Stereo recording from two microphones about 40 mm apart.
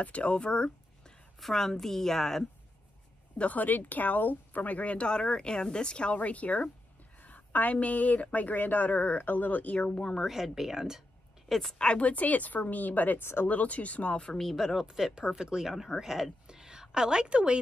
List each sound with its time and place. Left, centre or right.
0.0 s speech: left
1.4 s a woman's voice: centre
3.3 s speech: left
7.2 s a sound: left
7.7 s speech: left
9.8 s speech: left
10.2 s speech: centre
11.4 s a woman's voice: centre
11.8 s speech: left
13.2 s speech: left
13.5 s speech: left
14.1 s speech: left
14.4 s speech: centre
14.9 s speech: centre